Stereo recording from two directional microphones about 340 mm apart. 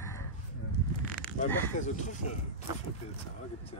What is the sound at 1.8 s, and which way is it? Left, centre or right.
Speech, left.